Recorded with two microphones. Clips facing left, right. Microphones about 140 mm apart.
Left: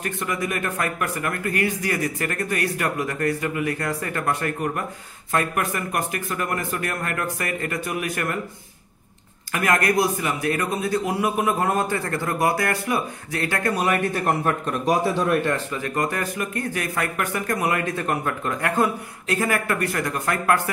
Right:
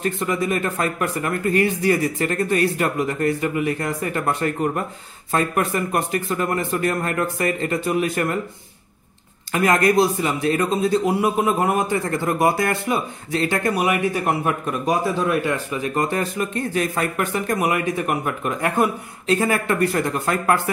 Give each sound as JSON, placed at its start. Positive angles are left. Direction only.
{"t": 0.0, "sound": "a man's voice", "side_deg": -25}
{"t": 9.5, "sound": "a man's voice", "side_deg": -25}